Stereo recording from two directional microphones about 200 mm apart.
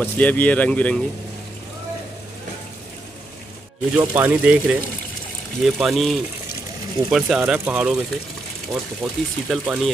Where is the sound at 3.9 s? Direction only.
10° right (ahead or behind).